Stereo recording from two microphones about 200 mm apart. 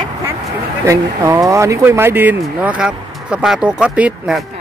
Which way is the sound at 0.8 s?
15° right (ahead or behind).